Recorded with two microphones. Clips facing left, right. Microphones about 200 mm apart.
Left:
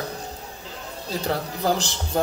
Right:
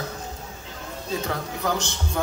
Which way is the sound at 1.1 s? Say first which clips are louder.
Left 2 dB; 35° left (ahead or behind).